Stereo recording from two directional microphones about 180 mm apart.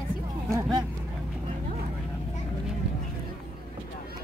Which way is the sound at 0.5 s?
20° right (ahead or behind).